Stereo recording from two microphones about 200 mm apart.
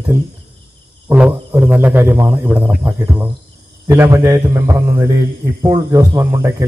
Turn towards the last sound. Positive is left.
turn(degrees=-15)  # may be behind; listen again after turning